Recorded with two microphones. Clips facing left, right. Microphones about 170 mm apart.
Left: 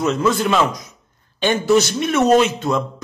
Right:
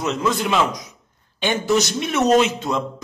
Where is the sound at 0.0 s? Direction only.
15° right (ahead or behind).